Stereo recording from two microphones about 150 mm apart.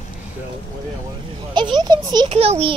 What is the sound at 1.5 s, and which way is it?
Speech, 30° right (ahead or behind).